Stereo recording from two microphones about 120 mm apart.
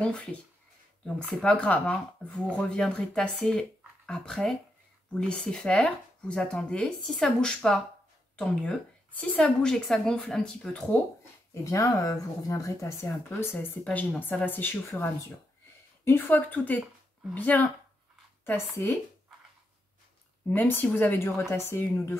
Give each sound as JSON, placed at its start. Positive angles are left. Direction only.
{"t": 0.0, "sound": "speech", "side_deg": 10}
{"t": 1.4, "sound": "speech", "side_deg": 10}
{"t": 11.6, "sound": "speech", "side_deg": 25}
{"t": 13.8, "sound": "speech", "side_deg": 10}
{"t": 20.4, "sound": "speech", "side_deg": 15}